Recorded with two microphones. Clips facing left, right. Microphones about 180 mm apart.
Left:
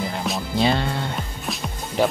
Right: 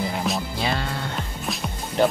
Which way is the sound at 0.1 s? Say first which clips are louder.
Right 1 dB; centre (ahead or behind).